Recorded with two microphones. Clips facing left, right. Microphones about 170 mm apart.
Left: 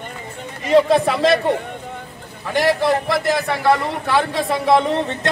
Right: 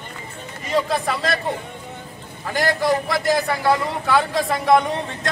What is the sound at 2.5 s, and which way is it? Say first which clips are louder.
A man's voice: left 3 dB; centre (ahead or behind).